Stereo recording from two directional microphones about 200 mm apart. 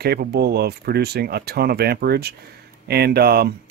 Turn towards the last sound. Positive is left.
turn(degrees=-50)  # may be behind; listen again after turning